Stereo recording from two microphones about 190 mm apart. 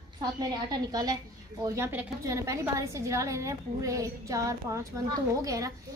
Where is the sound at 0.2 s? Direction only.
20° right (ahead or behind).